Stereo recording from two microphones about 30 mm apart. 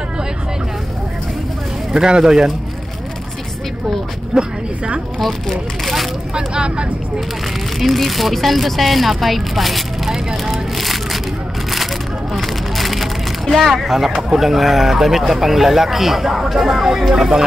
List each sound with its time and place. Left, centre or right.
2.0 s speech: right
2.2 s speech: centre
4.3 s speech: right
5.2 s speech: centre
6.3 s speech: right
7.8 s speech: centre
10.0 s vehicle: centre
12.4 s a sound: centre
14.4 s speech: centre